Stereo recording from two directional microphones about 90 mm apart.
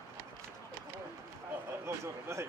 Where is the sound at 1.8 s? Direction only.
30° right (ahead or behind).